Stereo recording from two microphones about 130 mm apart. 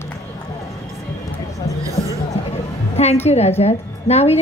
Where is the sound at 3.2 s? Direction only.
55° left (ahead or behind).